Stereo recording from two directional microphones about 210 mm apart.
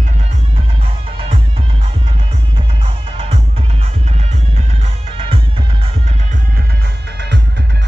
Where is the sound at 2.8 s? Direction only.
25° right (ahead or behind).